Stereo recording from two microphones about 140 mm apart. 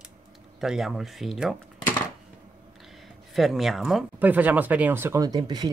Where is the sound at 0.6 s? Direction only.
Centre (ahead or behind).